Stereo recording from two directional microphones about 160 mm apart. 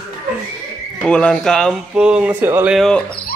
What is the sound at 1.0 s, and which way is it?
Speech, 5° left (ahead or behind).